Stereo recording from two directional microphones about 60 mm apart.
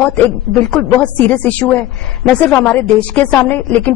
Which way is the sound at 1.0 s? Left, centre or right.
Left.